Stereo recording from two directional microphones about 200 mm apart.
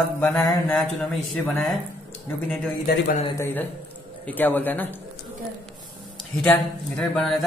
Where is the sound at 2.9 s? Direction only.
50° left (ahead or behind).